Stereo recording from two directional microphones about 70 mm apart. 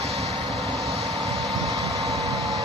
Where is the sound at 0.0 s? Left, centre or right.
Centre.